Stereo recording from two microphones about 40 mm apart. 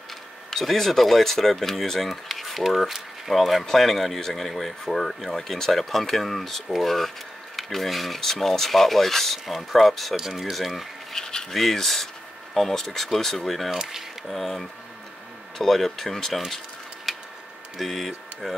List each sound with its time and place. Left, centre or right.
0.5 s speech: centre
10.1 s speech: centre
11.1 s a sound: centre
11.5 s speech: centre
17.1 s printer: centre
17.7 s speech: centre